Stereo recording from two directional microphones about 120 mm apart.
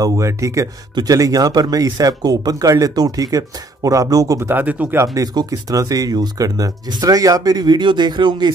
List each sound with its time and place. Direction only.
0.0 s speech: 25° right (ahead or behind)
5.1 s speech: 35° right (ahead or behind)